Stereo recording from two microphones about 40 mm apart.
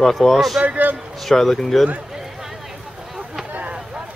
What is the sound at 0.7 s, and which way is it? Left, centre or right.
Speech, right.